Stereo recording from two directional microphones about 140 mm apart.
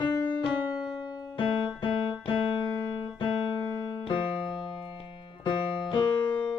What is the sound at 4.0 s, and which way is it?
Music, 35° left (ahead or behind).